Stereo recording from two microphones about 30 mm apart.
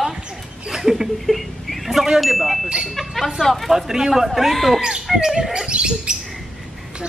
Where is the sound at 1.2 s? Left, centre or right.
Centre.